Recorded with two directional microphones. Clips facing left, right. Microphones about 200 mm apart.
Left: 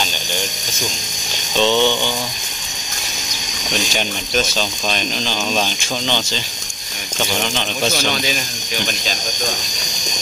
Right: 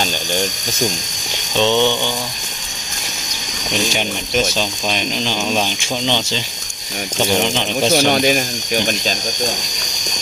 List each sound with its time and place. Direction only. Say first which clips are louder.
1.6 s speech: right 1 dB; 15° right (ahead or behind)
4.6 s speech: right 1 dB; 15° right (ahead or behind)
7.2 s speech: right 4 dB; 20° right (ahead or behind)